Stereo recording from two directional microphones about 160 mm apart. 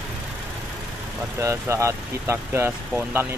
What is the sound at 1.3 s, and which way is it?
Speech, 15° right (ahead or behind).